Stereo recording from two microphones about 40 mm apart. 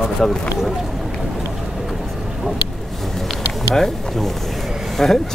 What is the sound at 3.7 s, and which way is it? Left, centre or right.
Speech, centre.